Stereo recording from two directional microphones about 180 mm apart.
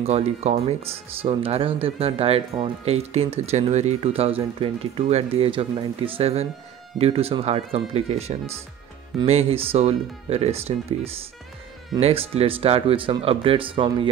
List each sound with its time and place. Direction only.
0.0 s speech: 35° right (ahead or behind)